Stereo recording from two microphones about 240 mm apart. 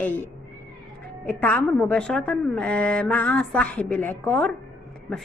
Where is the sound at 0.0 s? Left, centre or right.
Centre.